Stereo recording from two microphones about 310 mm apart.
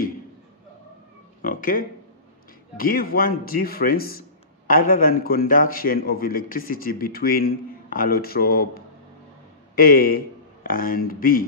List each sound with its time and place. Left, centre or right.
1.4 s a man's voice: left